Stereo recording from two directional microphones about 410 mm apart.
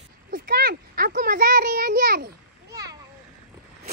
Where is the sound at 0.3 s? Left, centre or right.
Right.